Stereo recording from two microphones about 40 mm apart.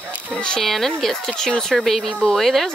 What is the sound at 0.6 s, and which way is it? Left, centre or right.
Speech, centre.